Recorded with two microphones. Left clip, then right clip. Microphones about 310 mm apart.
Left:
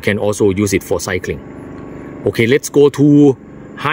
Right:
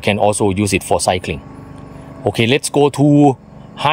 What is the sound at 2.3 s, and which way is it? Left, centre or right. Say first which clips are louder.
Speech: left 2 dB; centre.